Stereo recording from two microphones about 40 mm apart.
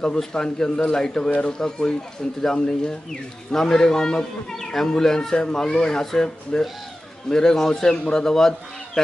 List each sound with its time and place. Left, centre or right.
0.0 s speech: centre